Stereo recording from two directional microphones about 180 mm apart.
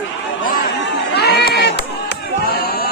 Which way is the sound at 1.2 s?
65° left (ahead or behind).